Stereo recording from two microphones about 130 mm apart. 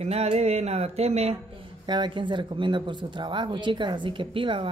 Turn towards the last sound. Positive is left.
turn(degrees=-40)  # may be behind; listen again after turning